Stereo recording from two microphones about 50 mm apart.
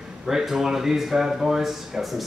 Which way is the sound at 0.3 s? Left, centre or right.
Centre.